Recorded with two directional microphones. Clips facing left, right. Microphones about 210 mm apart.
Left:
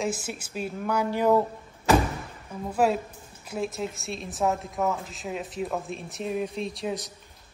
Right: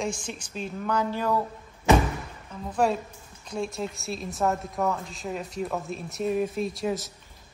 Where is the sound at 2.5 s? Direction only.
5° left (ahead or behind).